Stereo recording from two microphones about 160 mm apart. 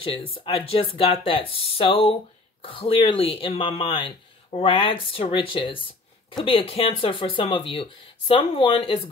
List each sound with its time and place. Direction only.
0.0 s speech: 30° left (ahead or behind)